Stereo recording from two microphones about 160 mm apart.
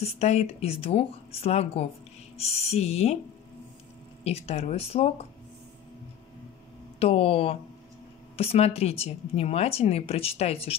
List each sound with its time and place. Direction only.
0.0 s speech: 40° left (ahead or behind)
4.2 s speech: 40° left (ahead or behind)
7.0 s speech: 35° left (ahead or behind)